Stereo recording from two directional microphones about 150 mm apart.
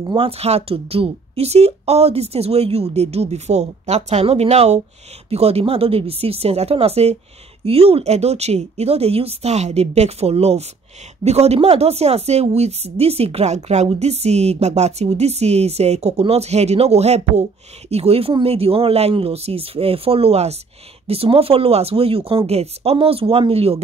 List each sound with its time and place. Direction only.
0.1 s a woman's voice: 40° right (ahead or behind)